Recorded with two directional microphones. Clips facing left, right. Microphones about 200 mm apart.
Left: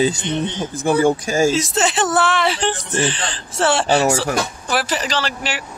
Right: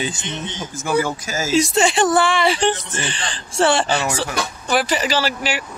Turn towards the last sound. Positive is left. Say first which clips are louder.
# right 2 dB
turn(degrees=-5)  # may be behind; listen again after turning